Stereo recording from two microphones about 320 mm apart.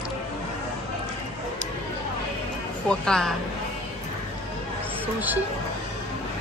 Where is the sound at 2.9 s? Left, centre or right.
Centre.